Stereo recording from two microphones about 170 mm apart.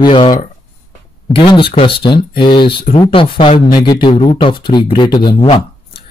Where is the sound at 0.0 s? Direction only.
30° left (ahead or behind).